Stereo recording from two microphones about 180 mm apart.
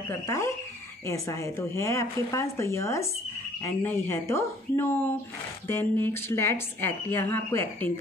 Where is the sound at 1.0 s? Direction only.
15° left (ahead or behind).